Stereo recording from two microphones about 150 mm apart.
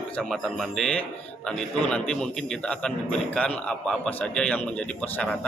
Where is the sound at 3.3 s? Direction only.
5° left (ahead or behind).